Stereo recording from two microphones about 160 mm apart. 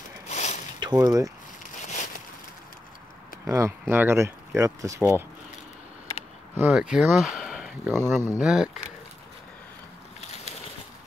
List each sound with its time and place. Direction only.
0.3 s a sound: 45° left (ahead or behind)
0.7 s speech: 25° right (ahead or behind)
1.9 s a sound: 50° left (ahead or behind)
3.4 s speech: 20° right (ahead or behind)
6.5 s speech: 10° right (ahead or behind)
7.9 s speech: 15° right (ahead or behind)